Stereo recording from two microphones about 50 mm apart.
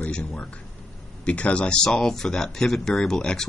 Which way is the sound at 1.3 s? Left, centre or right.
Left.